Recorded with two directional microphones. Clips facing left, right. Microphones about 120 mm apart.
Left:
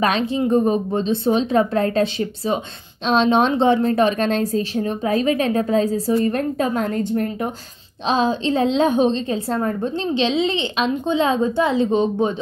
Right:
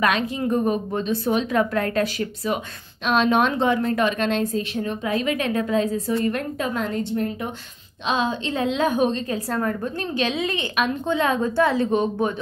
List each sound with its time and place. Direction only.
0.0 s a woman's voice: 30° left (ahead or behind)